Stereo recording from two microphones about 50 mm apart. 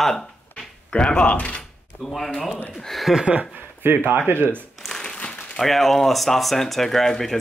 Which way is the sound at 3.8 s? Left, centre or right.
Right.